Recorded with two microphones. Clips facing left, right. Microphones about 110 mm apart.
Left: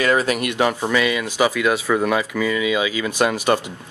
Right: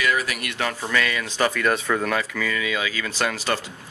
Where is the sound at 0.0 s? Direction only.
30° left (ahead or behind).